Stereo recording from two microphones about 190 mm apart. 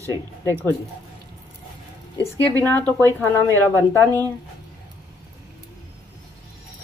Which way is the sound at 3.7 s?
20° right (ahead or behind).